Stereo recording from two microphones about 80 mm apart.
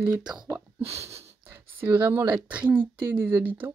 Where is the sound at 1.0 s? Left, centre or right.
Right.